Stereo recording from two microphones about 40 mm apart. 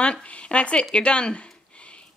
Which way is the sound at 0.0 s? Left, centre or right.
Left.